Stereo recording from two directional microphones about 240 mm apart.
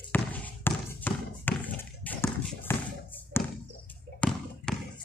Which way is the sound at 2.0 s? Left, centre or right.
Centre.